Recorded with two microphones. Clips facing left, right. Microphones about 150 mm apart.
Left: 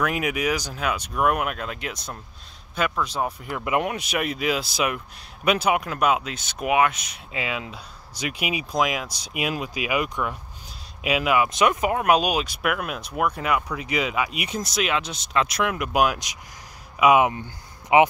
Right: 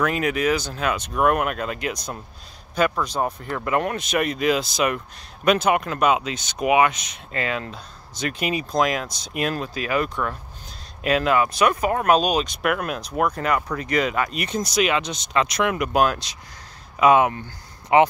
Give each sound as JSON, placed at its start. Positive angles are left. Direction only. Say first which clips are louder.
{"t": 0.0, "sound": "speech", "louder": "right 3 dB", "side_deg": 10}
{"t": 11.4, "sound": "speech", "louder": "right 1 dB", "side_deg": 20}